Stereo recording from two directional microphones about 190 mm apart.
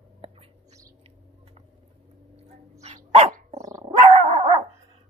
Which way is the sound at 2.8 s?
35° right (ahead or behind).